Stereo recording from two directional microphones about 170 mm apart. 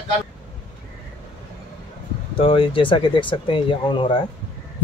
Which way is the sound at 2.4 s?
30° left (ahead or behind).